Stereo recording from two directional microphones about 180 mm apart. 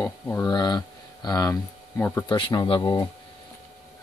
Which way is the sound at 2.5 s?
25° left (ahead or behind).